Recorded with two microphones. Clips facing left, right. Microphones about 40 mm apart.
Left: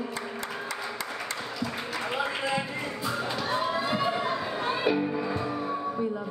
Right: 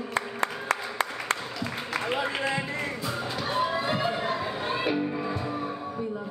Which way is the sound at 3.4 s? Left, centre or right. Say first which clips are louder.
Right 3 dB; centre.